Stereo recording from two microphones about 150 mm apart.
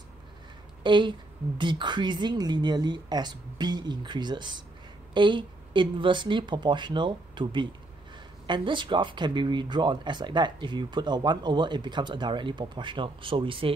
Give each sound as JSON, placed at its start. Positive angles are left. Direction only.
{"t": 0.8, "sound": "speech", "side_deg": -30}